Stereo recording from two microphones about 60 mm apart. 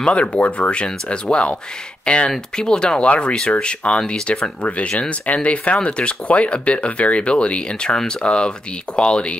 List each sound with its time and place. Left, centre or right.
0.0 s speech: left